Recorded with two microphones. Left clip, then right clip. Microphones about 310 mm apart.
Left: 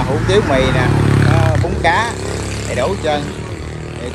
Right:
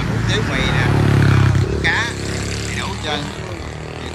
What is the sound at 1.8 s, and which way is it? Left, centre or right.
Speech, centre.